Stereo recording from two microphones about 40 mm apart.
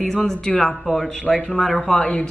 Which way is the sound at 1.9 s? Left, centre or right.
Centre.